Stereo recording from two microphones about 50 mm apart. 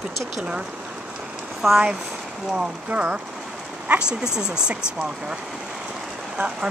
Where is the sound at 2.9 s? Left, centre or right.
Right.